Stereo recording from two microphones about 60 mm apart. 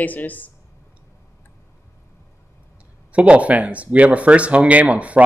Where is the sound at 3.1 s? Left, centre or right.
Right.